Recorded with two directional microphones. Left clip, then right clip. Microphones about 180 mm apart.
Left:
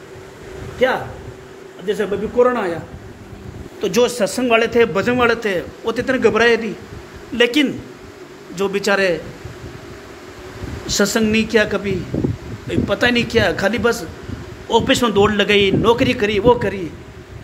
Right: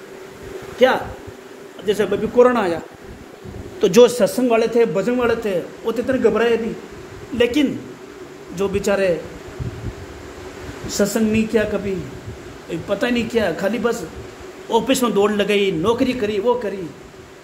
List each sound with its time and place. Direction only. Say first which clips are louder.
1.9 s a man's voice: right 1 dB; 20° right (ahead or behind)
3.8 s speech: right 4 dB; 55° right (ahead or behind)
4.4 s a man's voice: left 4 dB; centre (ahead or behind)
10.9 s a man's voice: left 3 dB; 10° left (ahead or behind); by 16.7 s 30° left (ahead or behind)